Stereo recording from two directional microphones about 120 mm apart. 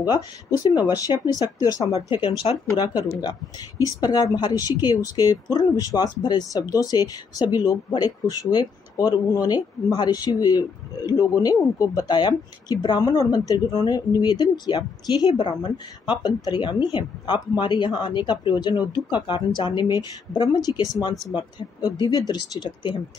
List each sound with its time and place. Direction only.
0.0 s speech: 30° left (ahead or behind)
2.0 s speech: 45° left (ahead or behind)
3.0 s speech: 30° left (ahead or behind)